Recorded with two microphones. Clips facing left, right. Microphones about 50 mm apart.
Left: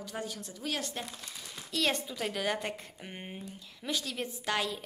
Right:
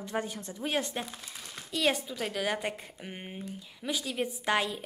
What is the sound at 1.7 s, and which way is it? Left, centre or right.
A woman's voice, centre.